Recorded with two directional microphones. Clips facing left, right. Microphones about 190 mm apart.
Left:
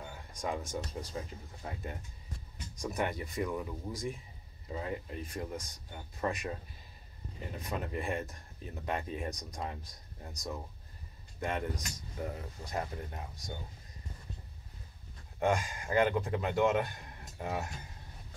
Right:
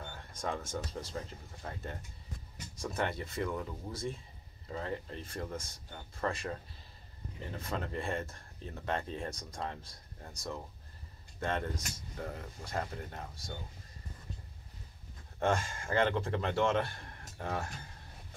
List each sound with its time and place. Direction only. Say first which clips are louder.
0.0 s a sound: left 1 dB; 10° left (ahead or behind)
1.0 s speech: left 1 dB; 10° left (ahead or behind)
15.3 s a man's voice: left 1 dB; 15° left (ahead or behind)